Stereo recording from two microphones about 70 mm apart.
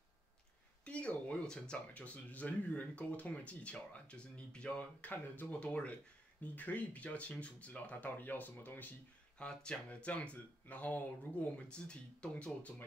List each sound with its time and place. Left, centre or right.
0.8 s speech: centre
9.4 s speech: centre